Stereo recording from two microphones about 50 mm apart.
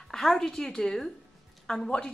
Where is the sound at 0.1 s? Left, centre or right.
Centre.